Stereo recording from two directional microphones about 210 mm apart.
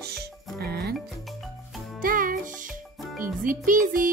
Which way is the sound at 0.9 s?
Centre (ahead or behind).